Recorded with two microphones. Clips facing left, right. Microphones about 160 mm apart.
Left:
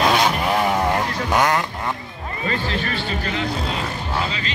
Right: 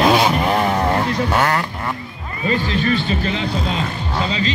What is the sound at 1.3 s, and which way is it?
Vehicle, 15° left (ahead or behind).